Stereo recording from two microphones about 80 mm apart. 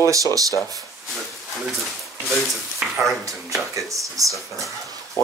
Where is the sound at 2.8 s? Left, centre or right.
Centre.